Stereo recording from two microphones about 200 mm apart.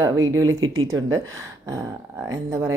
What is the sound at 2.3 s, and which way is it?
Speech, 15° right (ahead or behind).